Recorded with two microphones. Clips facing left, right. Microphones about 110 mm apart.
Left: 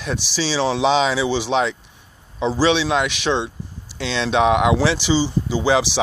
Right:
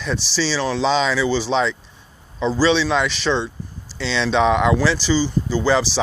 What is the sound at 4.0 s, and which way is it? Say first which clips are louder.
Speech: right 1 dB; 50° left (ahead or behind).